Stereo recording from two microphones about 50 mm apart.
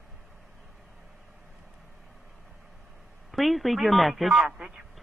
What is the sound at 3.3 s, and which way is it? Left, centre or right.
Speech, centre.